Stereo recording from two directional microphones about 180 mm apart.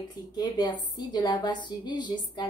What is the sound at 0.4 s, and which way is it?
A woman's voice, 25° left (ahead or behind).